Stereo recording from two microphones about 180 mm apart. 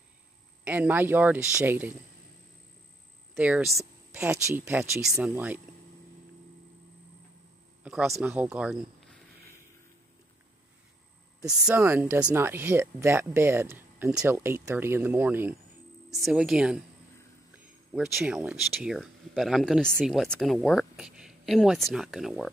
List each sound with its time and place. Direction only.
0.7 s speech: 10° right (ahead or behind)
3.3 s speech: 5° right (ahead or behind)
7.8 s a sound: 5° right (ahead or behind)
8.1 s speech: 10° right (ahead or behind)
11.4 s speech: 10° right (ahead or behind)
17.9 s speech: 5° right (ahead or behind)